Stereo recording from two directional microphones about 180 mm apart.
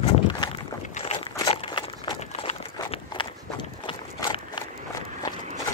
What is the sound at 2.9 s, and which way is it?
Walk, 30° left (ahead or behind).